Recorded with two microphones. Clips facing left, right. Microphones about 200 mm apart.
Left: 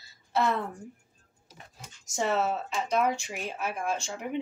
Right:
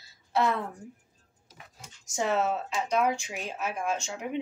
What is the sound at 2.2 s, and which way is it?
Speech, centre (ahead or behind).